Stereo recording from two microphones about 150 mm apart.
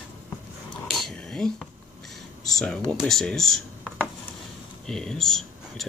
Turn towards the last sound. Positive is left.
turn(degrees=0)  # may be behind; listen again after turning